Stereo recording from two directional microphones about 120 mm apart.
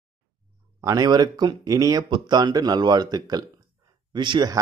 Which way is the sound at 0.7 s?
30° right (ahead or behind).